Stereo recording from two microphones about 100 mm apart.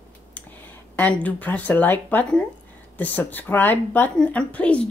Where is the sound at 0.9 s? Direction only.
15° left (ahead or behind).